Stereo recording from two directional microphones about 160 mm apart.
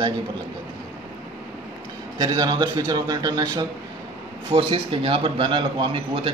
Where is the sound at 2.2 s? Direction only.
25° right (ahead or behind).